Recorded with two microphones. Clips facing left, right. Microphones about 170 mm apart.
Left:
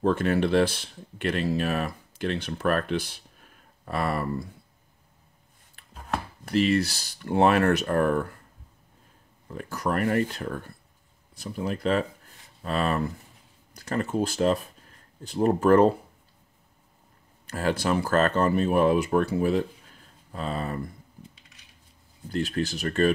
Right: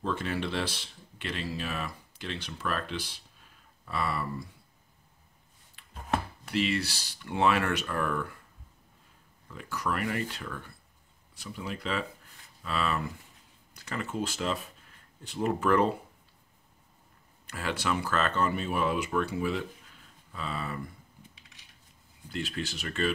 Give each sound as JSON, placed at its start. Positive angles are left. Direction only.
{"t": 0.0, "sound": "speech", "side_deg": 55}
{"t": 5.8, "sound": "chopping", "side_deg": 50}
{"t": 6.4, "sound": "speech", "side_deg": 45}
{"t": 9.5, "sound": "speech", "side_deg": 45}
{"t": 17.5, "sound": "speech", "side_deg": 40}
{"t": 22.3, "sound": "speech", "side_deg": 40}